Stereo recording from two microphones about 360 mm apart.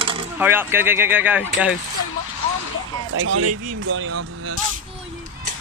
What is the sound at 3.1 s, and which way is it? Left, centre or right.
Speech, right.